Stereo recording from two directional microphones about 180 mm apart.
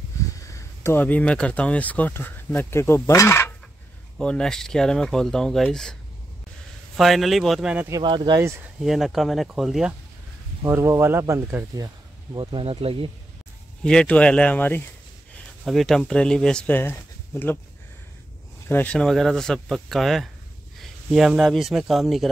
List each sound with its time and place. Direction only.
0.4 s speech: 15° left (ahead or behind)
7.0 s speech: centre (ahead or behind)
7.9 s speech: 25° right (ahead or behind)
8.8 s speech: centre (ahead or behind)
10.6 s speech: 15° right (ahead or behind)
12.4 s speech: 25° right (ahead or behind)
13.8 s speech: 5° left (ahead or behind)
18.7 s speech: 10° left (ahead or behind)